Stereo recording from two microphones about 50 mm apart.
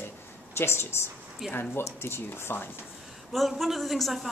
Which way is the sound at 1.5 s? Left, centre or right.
Left.